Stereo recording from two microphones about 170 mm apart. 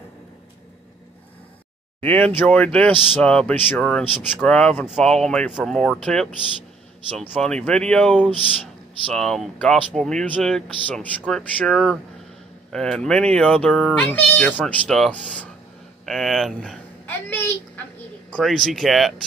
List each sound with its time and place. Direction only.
2.0 s speech: 10° left (ahead or behind)
16.1 s a sound: centre (ahead or behind)
18.3 s speech: centre (ahead or behind)